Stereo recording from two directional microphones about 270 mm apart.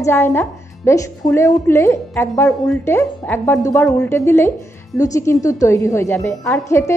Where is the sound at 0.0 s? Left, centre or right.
Centre.